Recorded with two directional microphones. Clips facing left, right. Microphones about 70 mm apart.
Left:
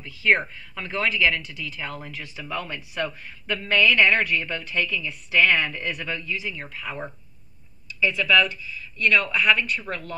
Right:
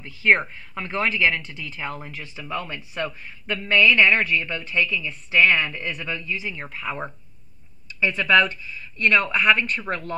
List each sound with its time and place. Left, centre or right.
0.0 s a woman's voice: right